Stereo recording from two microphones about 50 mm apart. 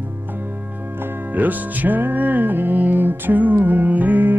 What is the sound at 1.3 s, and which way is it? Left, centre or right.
Music, right.